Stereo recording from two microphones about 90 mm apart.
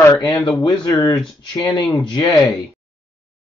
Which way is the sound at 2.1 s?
55° left (ahead or behind).